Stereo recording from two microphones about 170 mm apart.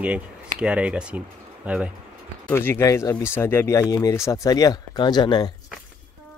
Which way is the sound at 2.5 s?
15° left (ahead or behind).